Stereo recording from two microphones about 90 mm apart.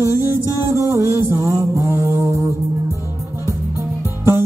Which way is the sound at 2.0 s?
35° right (ahead or behind).